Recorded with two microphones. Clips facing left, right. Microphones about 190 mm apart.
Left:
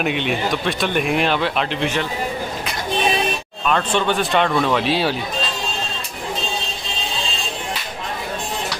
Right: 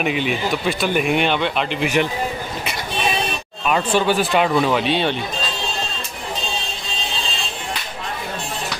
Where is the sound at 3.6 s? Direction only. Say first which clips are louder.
Right 1 dB; 5° right (ahead or behind).